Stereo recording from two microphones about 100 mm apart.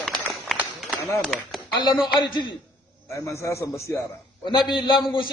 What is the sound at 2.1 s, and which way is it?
Speech, 50° left (ahead or behind).